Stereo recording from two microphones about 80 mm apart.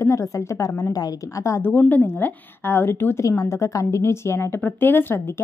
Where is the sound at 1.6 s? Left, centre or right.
Left.